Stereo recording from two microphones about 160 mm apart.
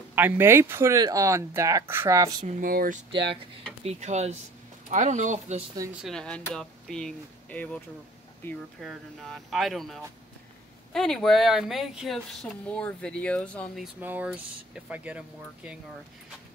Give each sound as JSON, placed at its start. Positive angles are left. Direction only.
{"t": 0.1, "sound": "speech", "side_deg": -15}
{"t": 2.4, "sound": "speech", "side_deg": -65}
{"t": 3.1, "sound": "speech", "side_deg": -30}
{"t": 3.8, "sound": "speech", "side_deg": -45}
{"t": 6.0, "sound": "speech", "side_deg": 5}
{"t": 8.8, "sound": "speech", "side_deg": 0}
{"t": 14.0, "sound": "speech", "side_deg": -10}